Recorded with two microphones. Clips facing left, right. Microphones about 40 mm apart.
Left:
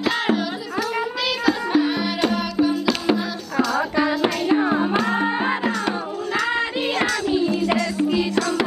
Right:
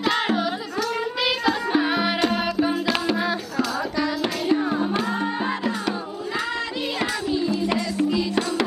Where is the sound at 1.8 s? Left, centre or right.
Centre.